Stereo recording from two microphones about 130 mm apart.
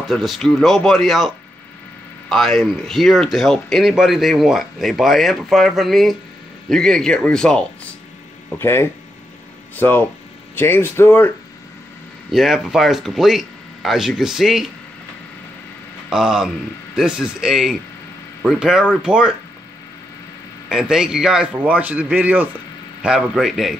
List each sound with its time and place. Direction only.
0.1 s speech: centre (ahead or behind)
8.5 s speech: 20° left (ahead or behind)
12.3 s speech: centre (ahead or behind)
16.1 s a man's voice: 5° right (ahead or behind)
20.6 s a man's voice: 5° right (ahead or behind)